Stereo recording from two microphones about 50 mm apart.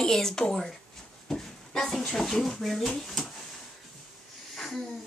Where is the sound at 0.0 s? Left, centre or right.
Centre.